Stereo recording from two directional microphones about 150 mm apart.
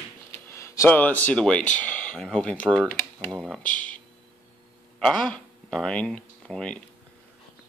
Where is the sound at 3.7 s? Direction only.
60° left (ahead or behind).